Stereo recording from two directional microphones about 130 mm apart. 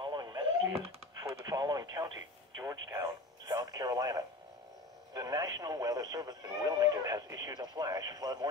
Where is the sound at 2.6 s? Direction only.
25° right (ahead or behind).